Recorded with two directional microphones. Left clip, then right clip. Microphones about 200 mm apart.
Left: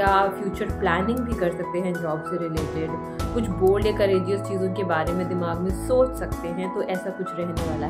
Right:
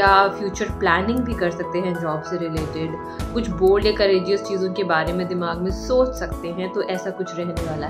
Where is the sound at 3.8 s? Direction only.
10° left (ahead or behind).